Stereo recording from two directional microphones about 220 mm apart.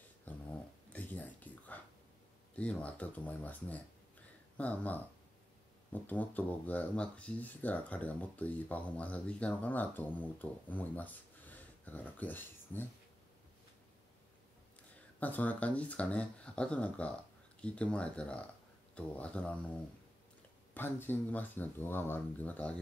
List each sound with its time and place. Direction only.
0.3 s a sound: 5° left (ahead or behind)
2.5 s speech: 5° left (ahead or behind)
6.0 s speech: 5° left (ahead or behind)
15.1 s speech: 5° left (ahead or behind)
20.7 s speech: 10° left (ahead or behind)